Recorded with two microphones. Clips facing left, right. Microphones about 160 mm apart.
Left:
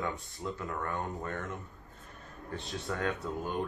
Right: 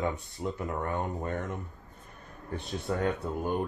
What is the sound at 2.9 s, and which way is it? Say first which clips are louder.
Speech: right 4 dB; 25° right (ahead or behind).